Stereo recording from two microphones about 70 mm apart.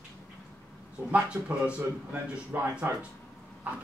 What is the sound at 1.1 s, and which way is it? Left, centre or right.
Speech, centre.